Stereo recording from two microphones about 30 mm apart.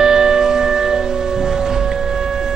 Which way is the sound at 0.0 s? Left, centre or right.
Right.